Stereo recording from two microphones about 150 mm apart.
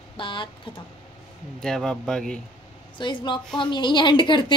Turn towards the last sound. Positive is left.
turn(degrees=30)  # may be behind; listen again after turning